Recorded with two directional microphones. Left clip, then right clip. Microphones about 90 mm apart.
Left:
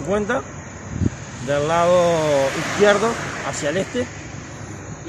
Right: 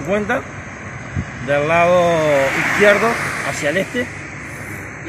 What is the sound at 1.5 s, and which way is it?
Speech, 30° left (ahead or behind).